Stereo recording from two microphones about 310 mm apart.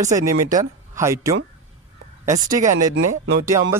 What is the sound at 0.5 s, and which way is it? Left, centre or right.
Speech, centre.